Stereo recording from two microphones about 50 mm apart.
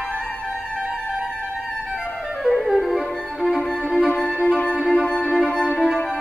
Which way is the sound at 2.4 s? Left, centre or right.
Centre.